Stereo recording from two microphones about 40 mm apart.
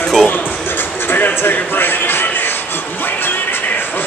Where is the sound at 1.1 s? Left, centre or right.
Left.